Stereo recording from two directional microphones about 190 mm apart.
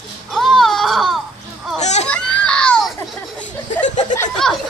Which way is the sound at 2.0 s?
5° left (ahead or behind).